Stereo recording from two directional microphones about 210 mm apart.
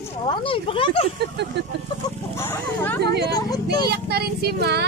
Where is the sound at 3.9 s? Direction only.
50° right (ahead or behind).